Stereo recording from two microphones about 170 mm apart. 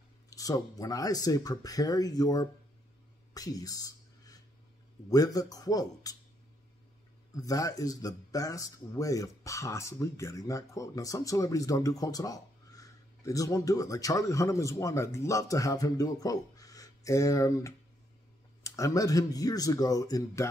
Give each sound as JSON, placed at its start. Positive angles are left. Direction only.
{"t": 0.3, "sound": "speech", "side_deg": 20}
{"t": 3.3, "sound": "a sound", "side_deg": 20}
{"t": 5.1, "sound": "speech", "side_deg": 20}
{"t": 7.3, "sound": "speech", "side_deg": 20}